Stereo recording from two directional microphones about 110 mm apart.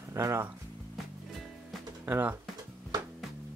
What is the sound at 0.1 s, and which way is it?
Speech, 25° right (ahead or behind).